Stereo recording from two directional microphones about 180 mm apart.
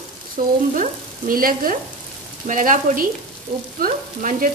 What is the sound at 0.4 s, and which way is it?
Frying, 45° right (ahead or behind).